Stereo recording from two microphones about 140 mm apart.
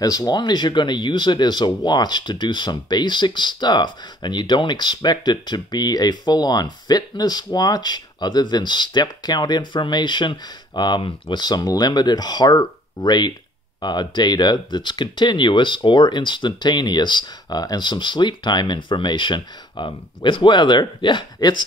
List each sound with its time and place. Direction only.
0.0 s speech: 25° left (ahead or behind)